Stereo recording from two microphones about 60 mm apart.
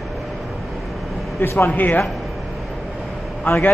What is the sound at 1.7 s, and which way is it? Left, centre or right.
Speech, left.